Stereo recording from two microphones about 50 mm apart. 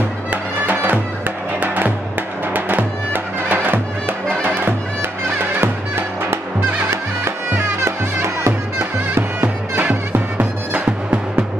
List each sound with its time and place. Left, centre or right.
0.3 s music: right
6.9 s music: right
8.7 s music: right